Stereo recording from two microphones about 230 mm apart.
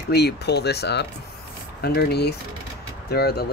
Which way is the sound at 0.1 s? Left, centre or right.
Left.